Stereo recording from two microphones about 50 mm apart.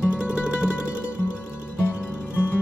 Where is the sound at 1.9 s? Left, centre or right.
Left.